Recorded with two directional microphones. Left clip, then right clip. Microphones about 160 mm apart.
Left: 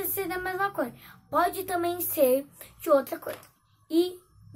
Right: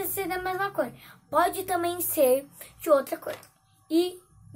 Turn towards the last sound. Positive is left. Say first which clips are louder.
# even
turn(degrees=0)  # may be behind; listen again after turning